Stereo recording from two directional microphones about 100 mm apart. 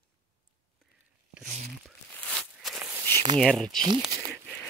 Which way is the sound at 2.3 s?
5° left (ahead or behind).